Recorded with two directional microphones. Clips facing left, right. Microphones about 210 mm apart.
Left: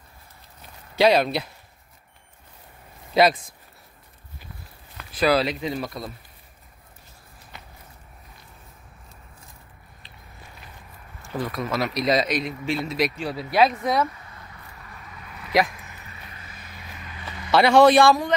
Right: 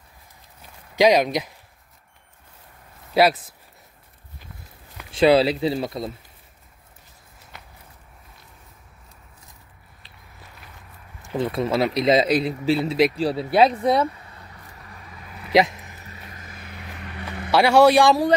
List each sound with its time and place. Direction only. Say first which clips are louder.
0.9 s a man's voice: right 2 dB; 15° right (ahead or behind)
3.2 s a man's voice: right 1 dB; 5° right (ahead or behind)
5.1 s speech: right 5 dB; 25° right (ahead or behind)
7.5 s walk: even; centre (ahead or behind)
11.2 s speech: right 5 dB; 25° right (ahead or behind)
16.0 s vehicle: right 2 dB; 40° right (ahead or behind)
16.6 s vehicle: right 5 dB; 60° right (ahead or behind)
17.5 s a man's voice: even; 10° right (ahead or behind)